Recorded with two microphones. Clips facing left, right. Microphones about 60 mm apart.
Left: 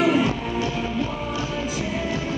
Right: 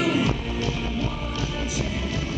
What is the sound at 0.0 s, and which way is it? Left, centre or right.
Music, centre.